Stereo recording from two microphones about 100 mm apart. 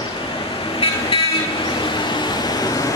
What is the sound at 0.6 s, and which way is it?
Vehicle, 60° left (ahead or behind).